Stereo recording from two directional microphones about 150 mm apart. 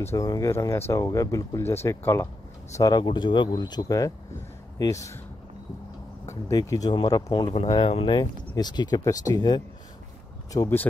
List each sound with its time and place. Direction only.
0.0 s speech: 20° left (ahead or behind)
2.7 s speech: 25° left (ahead or behind)
6.2 s speech: 20° left (ahead or behind)